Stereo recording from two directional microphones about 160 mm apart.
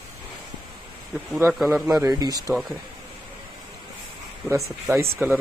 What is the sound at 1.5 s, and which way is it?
Speech, centre (ahead or behind).